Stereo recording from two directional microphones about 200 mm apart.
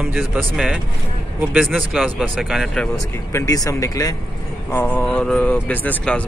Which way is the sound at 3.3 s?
15° left (ahead or behind).